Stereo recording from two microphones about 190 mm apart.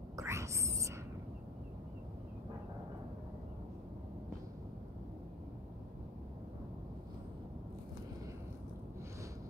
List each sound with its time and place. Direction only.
0.1 s whispering: 15° right (ahead or behind)